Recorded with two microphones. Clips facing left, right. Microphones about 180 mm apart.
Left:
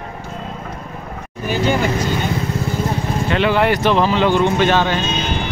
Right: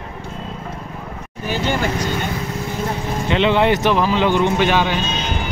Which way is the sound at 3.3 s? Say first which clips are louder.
Right 1 dB; 20° right (ahead or behind).